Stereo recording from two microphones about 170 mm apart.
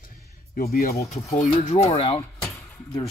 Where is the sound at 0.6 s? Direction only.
65° left (ahead or behind).